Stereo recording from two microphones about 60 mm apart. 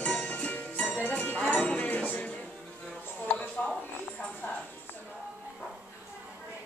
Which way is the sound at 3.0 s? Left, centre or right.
Left.